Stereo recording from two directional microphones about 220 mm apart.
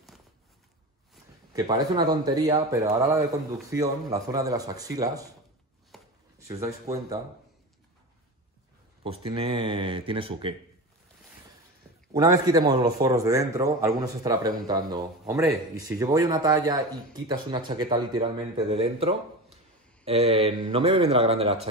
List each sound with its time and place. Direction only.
1.5 s a man's voice: 15° right (ahead or behind)
5.9 s chopping: centre (ahead or behind)
6.4 s a man's voice: 15° right (ahead or behind)
9.0 s speech: 25° right (ahead or behind)
12.1 s a man's voice: 15° right (ahead or behind)